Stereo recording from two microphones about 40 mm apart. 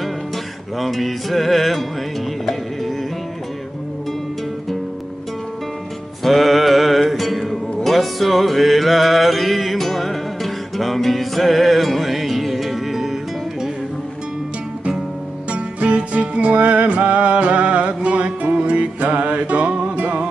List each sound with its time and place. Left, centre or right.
0.7 s music: centre
6.2 s music: centre
15.5 s music: right